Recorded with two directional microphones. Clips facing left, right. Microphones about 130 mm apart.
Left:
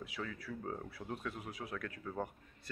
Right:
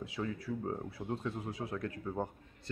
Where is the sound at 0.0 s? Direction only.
25° right (ahead or behind).